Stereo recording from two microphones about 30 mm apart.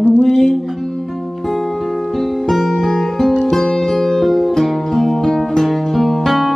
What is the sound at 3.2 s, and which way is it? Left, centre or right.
Music, right.